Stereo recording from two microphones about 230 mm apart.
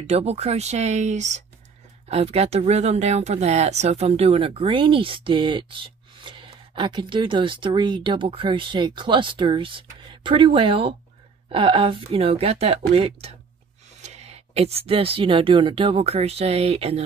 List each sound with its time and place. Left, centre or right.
0.0 s speech: right